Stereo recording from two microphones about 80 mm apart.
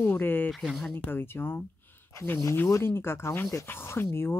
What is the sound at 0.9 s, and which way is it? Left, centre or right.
Speech, left.